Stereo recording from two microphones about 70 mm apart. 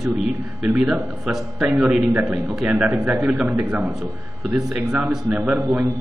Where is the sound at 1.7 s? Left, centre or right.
Centre.